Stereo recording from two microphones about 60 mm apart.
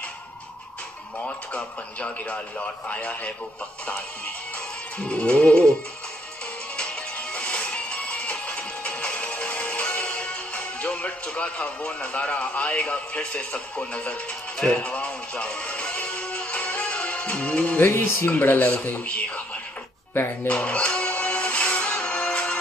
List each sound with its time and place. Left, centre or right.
1.2 s a man's voice: left
4.9 s music: centre
6.8 s music: centre
17.7 s a man's voice: left
20.4 s speech: centre
21.1 s music: left